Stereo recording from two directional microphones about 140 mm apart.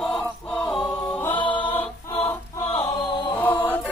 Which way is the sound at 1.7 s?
15° left (ahead or behind).